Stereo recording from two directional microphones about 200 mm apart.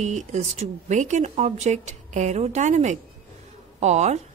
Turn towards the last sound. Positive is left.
turn(degrees=-35)  # may be behind; listen again after turning